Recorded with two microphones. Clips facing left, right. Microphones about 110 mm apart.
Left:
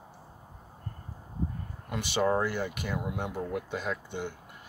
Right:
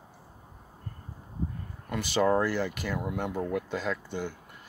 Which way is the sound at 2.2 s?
10° left (ahead or behind).